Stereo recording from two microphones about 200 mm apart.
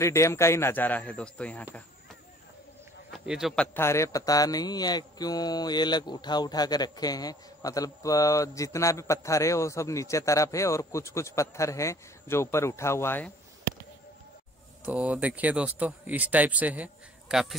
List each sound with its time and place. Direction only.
0.0 s speech: 15° left (ahead or behind)
3.1 s speech: centre (ahead or behind)
3.7 s speech: 15° left (ahead or behind)
14.9 s speech: 5° right (ahead or behind)